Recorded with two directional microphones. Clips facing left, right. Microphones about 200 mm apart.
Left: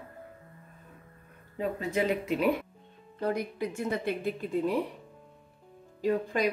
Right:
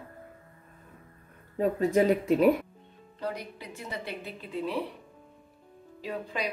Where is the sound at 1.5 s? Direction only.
40° right (ahead or behind).